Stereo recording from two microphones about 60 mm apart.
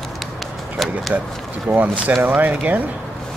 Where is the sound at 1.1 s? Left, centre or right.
Right.